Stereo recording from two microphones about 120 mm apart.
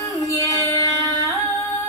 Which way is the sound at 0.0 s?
30° left (ahead or behind).